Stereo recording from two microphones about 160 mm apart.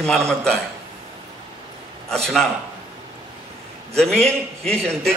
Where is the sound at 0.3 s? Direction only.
5° left (ahead or behind).